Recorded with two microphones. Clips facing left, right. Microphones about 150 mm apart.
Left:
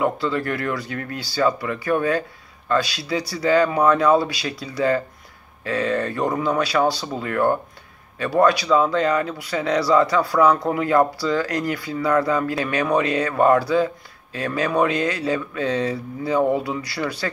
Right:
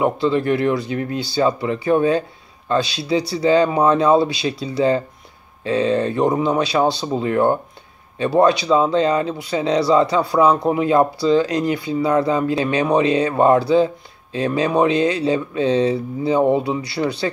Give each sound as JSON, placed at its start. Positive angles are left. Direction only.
{"t": 0.0, "sound": "speech", "side_deg": -20}